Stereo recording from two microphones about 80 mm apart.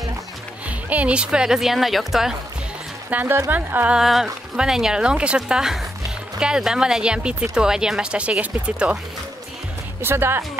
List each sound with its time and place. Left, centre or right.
0.7 s speech: centre
3.1 s speech: right
4.0 s speech: centre
10.0 s speech: right